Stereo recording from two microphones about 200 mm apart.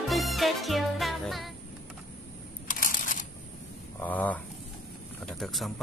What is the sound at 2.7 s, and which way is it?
Crushing, 45° left (ahead or behind).